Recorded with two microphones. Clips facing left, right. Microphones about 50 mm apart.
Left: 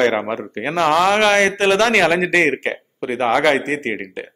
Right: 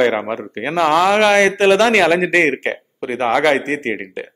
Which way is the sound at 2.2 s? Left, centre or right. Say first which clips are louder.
Right 1 dB; right.